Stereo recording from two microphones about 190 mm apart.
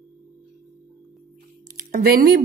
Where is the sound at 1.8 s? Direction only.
45° right (ahead or behind).